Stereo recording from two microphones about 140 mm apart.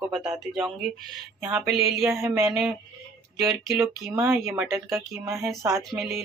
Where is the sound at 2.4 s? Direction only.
Centre (ahead or behind).